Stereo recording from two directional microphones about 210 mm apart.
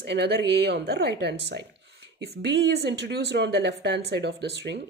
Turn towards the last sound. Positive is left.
turn(degrees=-55)  # may be behind; listen again after turning